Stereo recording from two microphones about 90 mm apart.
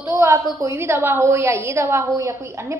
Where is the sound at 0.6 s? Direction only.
30° right (ahead or behind).